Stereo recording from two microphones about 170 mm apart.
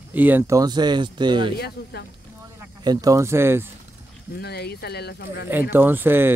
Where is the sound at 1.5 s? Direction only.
70° left (ahead or behind).